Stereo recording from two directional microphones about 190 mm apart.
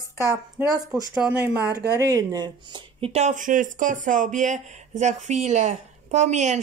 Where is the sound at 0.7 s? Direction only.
20° right (ahead or behind).